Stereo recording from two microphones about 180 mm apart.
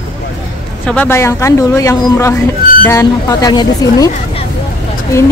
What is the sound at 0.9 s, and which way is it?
Speech, 10° left (ahead or behind).